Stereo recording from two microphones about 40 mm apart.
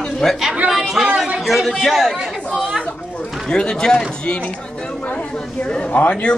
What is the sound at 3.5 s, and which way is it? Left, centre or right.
Speech, centre.